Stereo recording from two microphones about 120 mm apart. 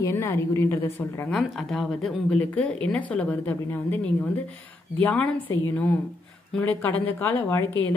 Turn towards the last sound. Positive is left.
turn(degrees=15)  # may be behind; listen again after turning